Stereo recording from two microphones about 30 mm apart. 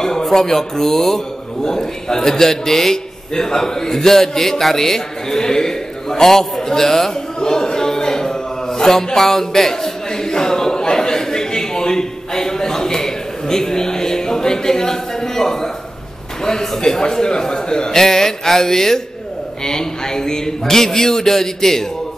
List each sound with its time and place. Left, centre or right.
0.0 s speech: centre
7.3 s a sound: left
17.1 s a man's voice: left
17.9 s speech: centre